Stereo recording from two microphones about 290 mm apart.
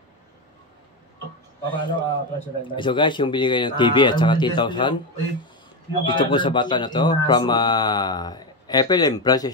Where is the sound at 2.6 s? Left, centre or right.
Centre.